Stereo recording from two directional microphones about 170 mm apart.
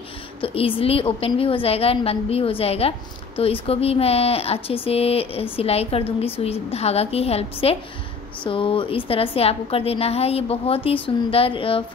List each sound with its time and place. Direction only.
0.4 s a woman's voice: 30° left (ahead or behind)